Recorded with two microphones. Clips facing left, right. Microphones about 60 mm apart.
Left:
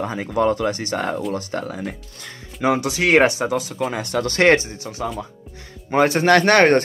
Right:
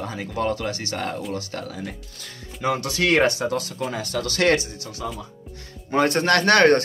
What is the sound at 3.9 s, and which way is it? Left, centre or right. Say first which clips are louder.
Speech: left 4 dB; left.